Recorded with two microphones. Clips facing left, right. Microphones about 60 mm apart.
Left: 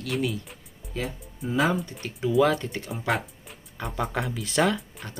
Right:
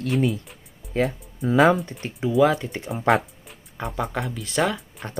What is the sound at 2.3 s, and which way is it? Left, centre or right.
Speech, centre.